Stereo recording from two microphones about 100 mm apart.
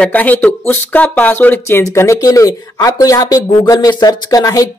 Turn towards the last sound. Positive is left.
turn(degrees=35)  # may be behind; listen again after turning